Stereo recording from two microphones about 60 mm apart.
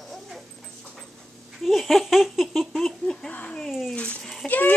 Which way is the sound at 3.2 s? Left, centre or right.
Left.